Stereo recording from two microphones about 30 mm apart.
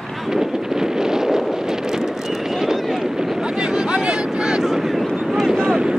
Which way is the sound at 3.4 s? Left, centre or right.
Right.